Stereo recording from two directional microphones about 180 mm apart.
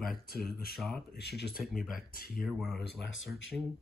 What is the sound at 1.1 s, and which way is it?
Speech, 65° left (ahead or behind).